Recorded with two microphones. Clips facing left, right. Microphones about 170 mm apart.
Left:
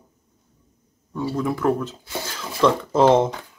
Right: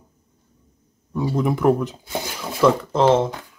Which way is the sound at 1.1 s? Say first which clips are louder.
Right 3 dB; 15° right (ahead or behind).